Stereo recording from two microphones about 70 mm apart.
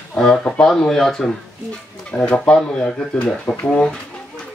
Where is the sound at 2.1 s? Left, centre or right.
Centre.